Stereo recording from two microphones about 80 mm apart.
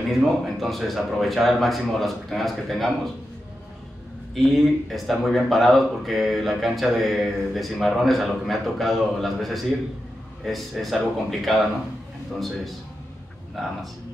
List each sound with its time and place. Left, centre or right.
0.1 s speech: centre
4.4 s speech: centre
13.6 s speech: centre